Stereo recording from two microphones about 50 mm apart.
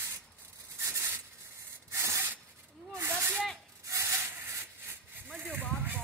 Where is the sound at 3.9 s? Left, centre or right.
Right.